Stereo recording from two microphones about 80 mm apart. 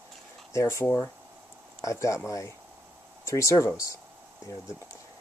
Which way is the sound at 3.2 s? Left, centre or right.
Left.